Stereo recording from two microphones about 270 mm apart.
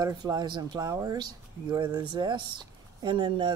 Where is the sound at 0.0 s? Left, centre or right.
Centre.